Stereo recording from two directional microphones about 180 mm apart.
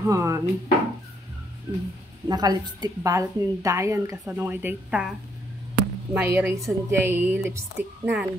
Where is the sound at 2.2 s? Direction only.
20° right (ahead or behind).